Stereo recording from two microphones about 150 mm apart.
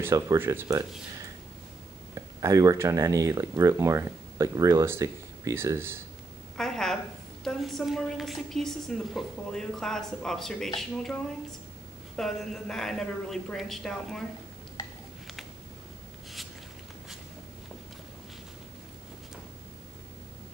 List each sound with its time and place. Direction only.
0.0 s speech: 20° right (ahead or behind)
2.1 s speech: 20° right (ahead or behind)
6.5 s a woman's voice: 5° left (ahead or behind)
12.2 s a woman's voice: 5° left (ahead or behind)